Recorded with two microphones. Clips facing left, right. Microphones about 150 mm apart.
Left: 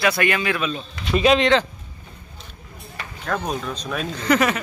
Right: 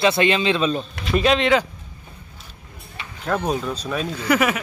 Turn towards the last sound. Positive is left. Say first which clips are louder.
# even
turn(degrees=-10)  # may be behind; listen again after turning